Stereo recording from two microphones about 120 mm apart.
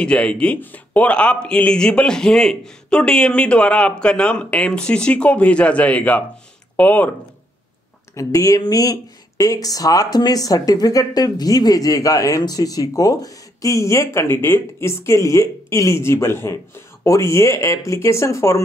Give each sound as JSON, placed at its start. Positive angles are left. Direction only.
{"t": 0.0, "sound": "speech", "side_deg": 10}
{"t": 8.2, "sound": "speech", "side_deg": 25}